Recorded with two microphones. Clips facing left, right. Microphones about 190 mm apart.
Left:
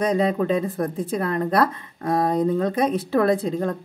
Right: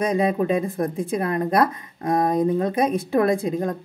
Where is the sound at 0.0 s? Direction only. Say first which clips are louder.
Even; 10° right (ahead or behind).